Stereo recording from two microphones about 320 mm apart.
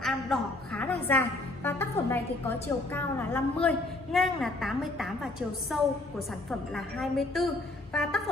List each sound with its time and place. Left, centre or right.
0.0 s a woman's voice: centre